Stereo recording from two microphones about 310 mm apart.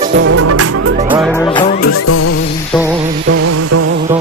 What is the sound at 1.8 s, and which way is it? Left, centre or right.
Music, left.